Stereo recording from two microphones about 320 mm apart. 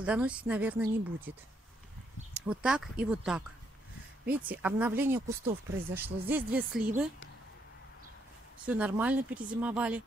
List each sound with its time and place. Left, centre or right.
0.0 s speech: centre
2.4 s speech: centre
8.6 s speech: centre